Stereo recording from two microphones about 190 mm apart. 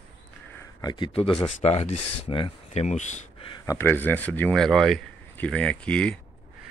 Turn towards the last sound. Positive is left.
turn(degrees=5)  # may be behind; listen again after turning